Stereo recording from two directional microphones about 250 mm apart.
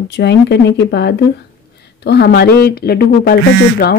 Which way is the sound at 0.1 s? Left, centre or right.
Left.